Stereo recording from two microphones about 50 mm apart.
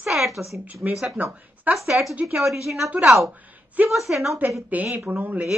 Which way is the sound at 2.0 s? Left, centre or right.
Right.